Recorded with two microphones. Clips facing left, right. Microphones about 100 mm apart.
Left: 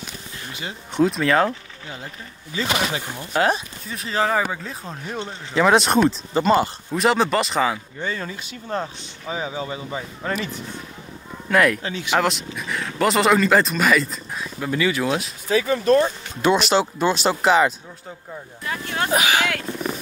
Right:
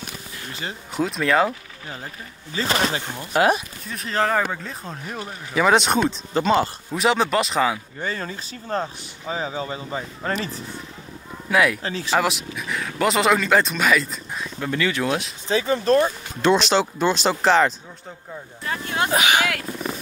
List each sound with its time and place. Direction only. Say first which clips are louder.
0.5 s speech: right 1 dB; 35° right (ahead or behind)
0.9 s speech: left 2 dB; centre (ahead or behind)
2.5 s speech: right 1 dB; 35° right (ahead or behind)
3.8 s speech: left 1 dB; centre (ahead or behind)
8.0 s speech: even; 45° right (ahead or behind)
11.4 s speech: left 2 dB; 5° right (ahead or behind)
11.8 s speech: right 1 dB; 35° right (ahead or behind)
12.1 s speech: left 1 dB; 5° right (ahead or behind)
15.4 s speech: left 2 dB; 30° right (ahead or behind)
16.3 s speech: even; 5° left (ahead or behind)
18.6 s speech: right 1 dB; 30° right (ahead or behind)
18.9 s speech: even; 20° right (ahead or behind)